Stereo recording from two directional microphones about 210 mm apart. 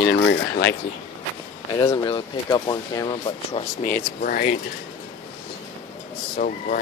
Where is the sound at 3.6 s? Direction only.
10° left (ahead or behind).